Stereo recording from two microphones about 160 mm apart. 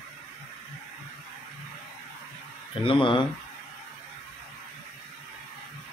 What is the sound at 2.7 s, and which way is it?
Speech, 35° left (ahead or behind).